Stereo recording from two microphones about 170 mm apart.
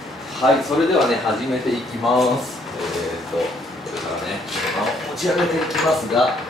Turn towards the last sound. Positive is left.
turn(degrees=0)  # may be behind; listen again after turning